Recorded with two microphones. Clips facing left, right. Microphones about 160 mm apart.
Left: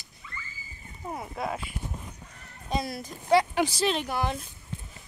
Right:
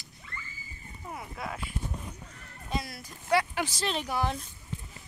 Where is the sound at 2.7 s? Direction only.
25° left (ahead or behind).